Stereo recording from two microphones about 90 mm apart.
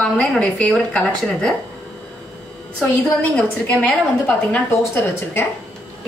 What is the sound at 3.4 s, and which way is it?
A woman's voice, 15° left (ahead or behind).